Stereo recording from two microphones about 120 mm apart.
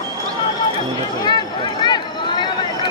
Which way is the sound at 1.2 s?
40° left (ahead or behind).